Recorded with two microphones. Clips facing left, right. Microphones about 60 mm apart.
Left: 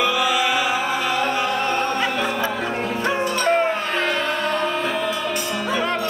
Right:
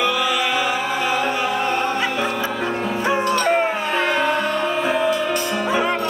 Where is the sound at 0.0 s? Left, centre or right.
Centre.